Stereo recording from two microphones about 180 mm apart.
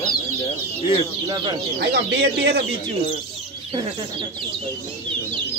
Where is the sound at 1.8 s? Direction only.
65° right (ahead or behind).